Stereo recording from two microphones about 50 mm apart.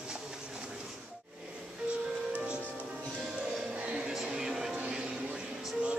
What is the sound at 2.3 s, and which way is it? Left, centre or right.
Music, right.